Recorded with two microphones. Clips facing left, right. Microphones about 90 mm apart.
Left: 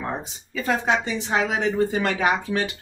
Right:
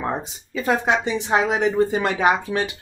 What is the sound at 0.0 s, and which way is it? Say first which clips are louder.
Speech: right 4 dB; 20° right (ahead or behind).